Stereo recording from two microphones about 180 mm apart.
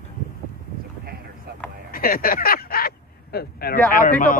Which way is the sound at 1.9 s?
55° left (ahead or behind).